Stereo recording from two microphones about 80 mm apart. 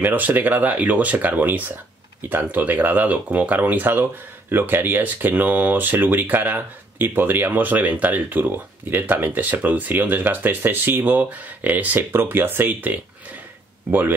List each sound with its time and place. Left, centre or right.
0.0 s speech: right